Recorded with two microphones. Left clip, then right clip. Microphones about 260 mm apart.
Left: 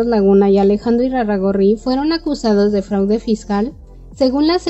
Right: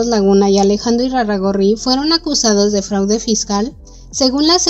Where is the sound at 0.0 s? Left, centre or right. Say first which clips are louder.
Even; right.